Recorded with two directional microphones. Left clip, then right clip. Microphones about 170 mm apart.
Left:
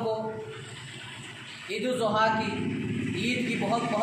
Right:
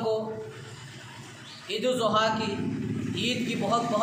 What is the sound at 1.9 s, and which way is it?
Speech, 10° right (ahead or behind).